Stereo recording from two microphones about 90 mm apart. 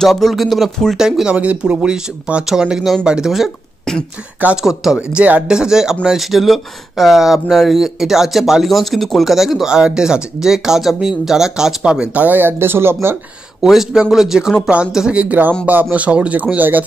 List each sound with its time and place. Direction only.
0.0 s speech: centre (ahead or behind); by 13.2 s 25° right (ahead or behind)
13.6 s speech: 5° right (ahead or behind)